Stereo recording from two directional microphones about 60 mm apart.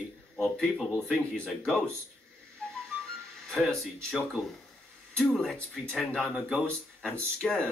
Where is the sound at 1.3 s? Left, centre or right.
Centre.